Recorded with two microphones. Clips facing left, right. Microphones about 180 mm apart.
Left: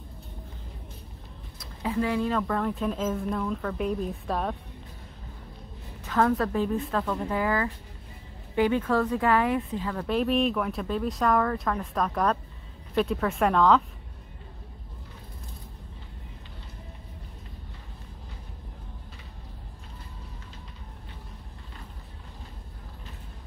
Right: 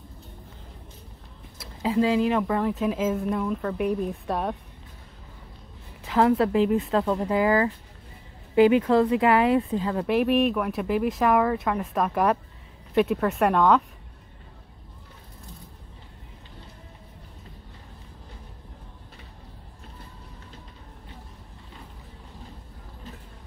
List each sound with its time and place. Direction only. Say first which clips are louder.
1.8 s speech: right 5 dB; 20° right (ahead or behind)
6.0 s a sound: right 3 dB; 15° right (ahead or behind)
6.3 s speech: right 5 dB; 20° right (ahead or behind)
8.6 s speech: right 5 dB; 15° right (ahead or behind)
9.5 s speech: right 5 dB; 25° right (ahead or behind)
10.0 s speech: right 2 dB; 10° right (ahead or behind)